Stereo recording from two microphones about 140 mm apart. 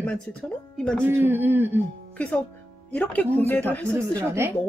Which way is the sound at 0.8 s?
5° left (ahead or behind).